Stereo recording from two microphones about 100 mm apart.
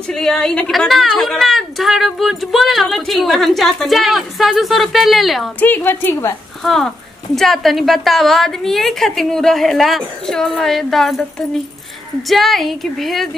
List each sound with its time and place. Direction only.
0.1 s a woman's voice: 5° left (ahead or behind)
5.6 s a woman's voice: 20° left (ahead or behind)
6.6 s a woman's voice: 5° left (ahead or behind)